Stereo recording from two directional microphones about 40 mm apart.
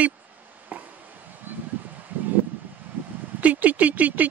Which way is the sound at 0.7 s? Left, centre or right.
Right.